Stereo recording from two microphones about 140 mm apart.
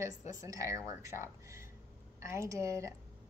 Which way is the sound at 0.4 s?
25° right (ahead or behind).